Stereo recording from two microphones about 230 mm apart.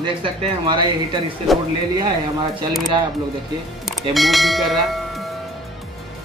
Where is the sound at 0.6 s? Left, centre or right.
Centre.